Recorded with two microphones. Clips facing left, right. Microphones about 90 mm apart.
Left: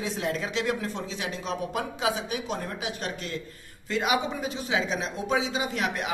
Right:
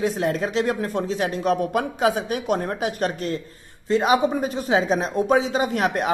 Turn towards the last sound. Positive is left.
turn(degrees=-45)  # may be behind; listen again after turning